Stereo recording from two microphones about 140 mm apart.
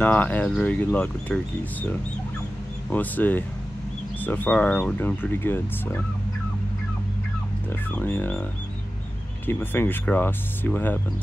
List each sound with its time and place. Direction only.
0.0 s speech: 10° left (ahead or behind)
7.9 s speech: 15° left (ahead or behind)
9.5 s speech: 15° left (ahead or behind)